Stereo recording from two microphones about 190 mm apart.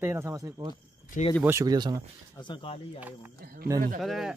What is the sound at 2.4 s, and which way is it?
Speech, 25° left (ahead or behind).